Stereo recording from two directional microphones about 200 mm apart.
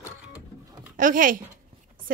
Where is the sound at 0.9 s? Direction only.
40° right (ahead or behind).